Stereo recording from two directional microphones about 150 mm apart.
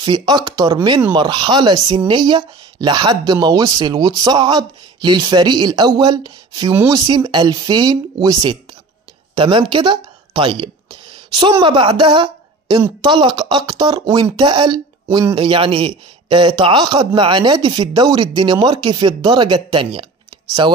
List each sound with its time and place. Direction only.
0.0 s speech: 30° right (ahead or behind)
9.3 s a sound: 35° right (ahead or behind)
11.6 s speech: 35° right (ahead or behind)